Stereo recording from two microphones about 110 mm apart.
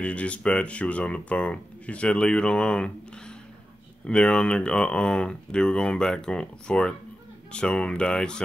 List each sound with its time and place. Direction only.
0.0 s speech: 10° left (ahead or behind)
4.0 s speech: 10° left (ahead or behind)